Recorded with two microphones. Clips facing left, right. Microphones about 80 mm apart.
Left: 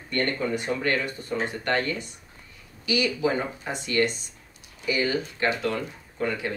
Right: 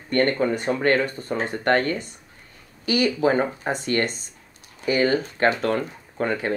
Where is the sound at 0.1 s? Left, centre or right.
Right.